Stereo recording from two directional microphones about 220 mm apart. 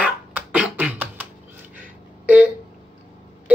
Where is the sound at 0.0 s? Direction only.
5° right (ahead or behind).